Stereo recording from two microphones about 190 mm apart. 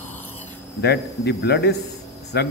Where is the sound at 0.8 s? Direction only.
60° left (ahead or behind).